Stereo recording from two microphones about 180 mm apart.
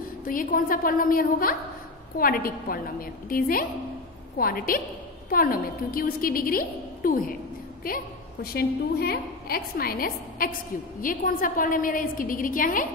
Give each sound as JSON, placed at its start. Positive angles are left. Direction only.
{"t": 0.2, "sound": "a woman's voice", "side_deg": 50}